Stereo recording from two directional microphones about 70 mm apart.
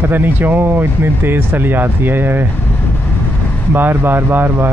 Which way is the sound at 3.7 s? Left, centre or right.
Right.